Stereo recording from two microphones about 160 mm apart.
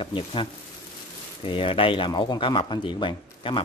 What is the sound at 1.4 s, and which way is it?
Speech, 35° left (ahead or behind).